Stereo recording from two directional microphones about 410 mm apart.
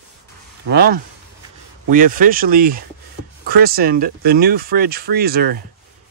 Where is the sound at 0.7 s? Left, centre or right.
Right.